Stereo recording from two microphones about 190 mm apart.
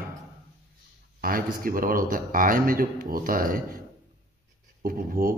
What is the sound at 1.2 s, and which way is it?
Speech, 50° right (ahead or behind).